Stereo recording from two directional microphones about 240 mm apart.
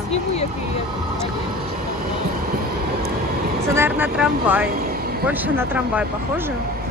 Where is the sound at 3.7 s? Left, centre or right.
Centre.